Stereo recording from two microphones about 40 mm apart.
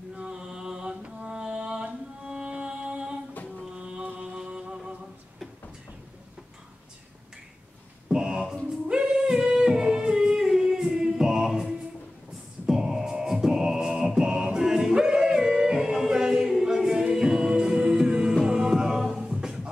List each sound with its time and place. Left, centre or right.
0.1 s mantra: right
1.0 s music: right
8.1 s music: centre
8.6 s singing: right
11.1 s choir: centre
12.6 s music: centre
14.6 s singing: centre
17.1 s music: centre